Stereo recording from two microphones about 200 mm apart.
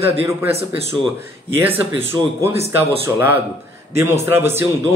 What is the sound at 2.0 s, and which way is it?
Speech, 10° right (ahead or behind).